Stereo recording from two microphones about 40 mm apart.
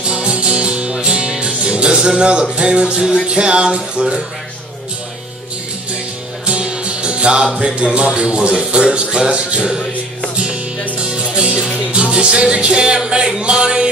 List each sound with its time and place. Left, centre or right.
0.1 s music: right
6.4 s music: right
11.1 s music: right